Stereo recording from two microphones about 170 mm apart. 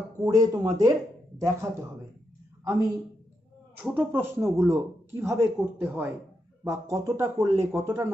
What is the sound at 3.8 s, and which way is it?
Speech, 10° right (ahead or behind).